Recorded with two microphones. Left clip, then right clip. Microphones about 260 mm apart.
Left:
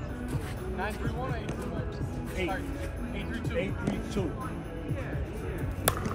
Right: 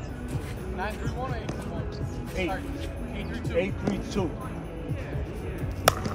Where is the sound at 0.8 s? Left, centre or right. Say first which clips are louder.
Right 2 dB; centre.